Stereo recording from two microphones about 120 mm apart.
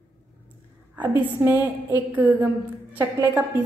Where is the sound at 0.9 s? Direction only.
15° right (ahead or behind).